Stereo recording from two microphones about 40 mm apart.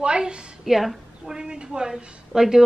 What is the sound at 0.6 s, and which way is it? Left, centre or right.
Speech, centre.